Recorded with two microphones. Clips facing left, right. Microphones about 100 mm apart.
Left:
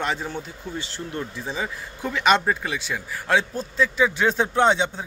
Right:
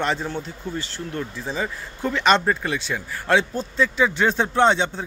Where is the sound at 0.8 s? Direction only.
20° left (ahead or behind).